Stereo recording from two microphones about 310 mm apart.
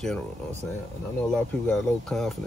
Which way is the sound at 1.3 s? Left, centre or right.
Centre.